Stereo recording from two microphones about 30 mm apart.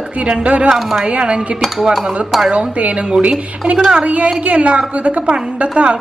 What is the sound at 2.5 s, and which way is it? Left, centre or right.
A woman's voice, right.